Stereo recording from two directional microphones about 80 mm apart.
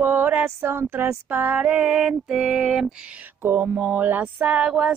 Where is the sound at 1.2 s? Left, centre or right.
Centre.